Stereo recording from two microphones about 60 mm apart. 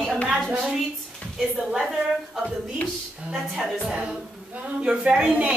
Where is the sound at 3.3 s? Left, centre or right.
Centre.